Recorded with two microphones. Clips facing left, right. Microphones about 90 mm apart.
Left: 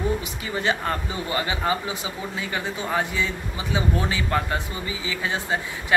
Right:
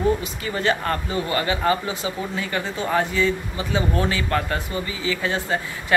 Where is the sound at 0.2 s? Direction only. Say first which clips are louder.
Right 2 dB; 15° left (ahead or behind).